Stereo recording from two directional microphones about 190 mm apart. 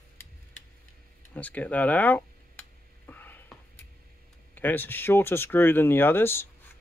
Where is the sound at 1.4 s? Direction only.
10° left (ahead or behind).